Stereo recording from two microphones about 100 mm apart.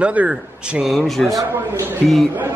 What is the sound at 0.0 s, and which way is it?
Speech, 10° right (ahead or behind).